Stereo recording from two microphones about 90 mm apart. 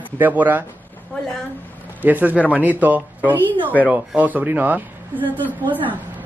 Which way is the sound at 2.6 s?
20° right (ahead or behind).